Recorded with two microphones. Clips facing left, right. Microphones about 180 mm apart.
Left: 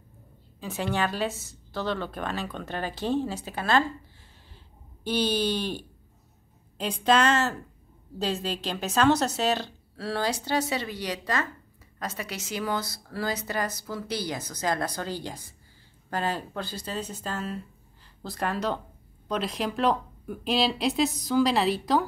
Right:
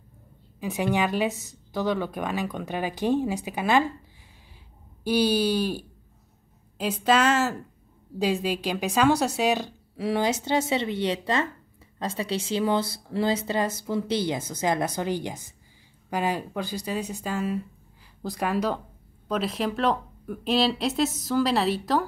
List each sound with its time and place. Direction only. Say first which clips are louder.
0.6 s a woman's voice: right 3 dB; 15° right (ahead or behind)
5.0 s a woman's voice: right 4 dB; 10° right (ahead or behind)